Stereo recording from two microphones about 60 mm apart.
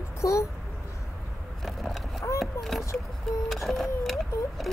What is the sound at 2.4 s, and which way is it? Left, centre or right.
Speech, centre.